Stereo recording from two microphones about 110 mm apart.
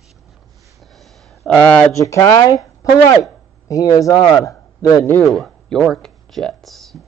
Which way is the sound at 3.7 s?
30° left (ahead or behind).